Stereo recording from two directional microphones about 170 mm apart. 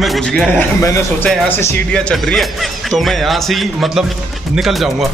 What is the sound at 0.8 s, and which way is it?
Speech, 15° left (ahead or behind).